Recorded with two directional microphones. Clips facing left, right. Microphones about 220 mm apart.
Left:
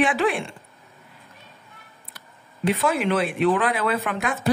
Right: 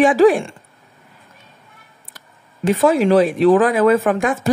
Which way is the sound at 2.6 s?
45° right (ahead or behind).